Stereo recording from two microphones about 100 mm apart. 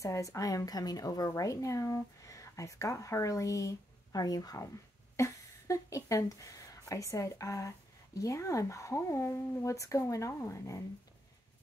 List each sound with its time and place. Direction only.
0.0 s a woman's voice: 30° left (ahead or behind)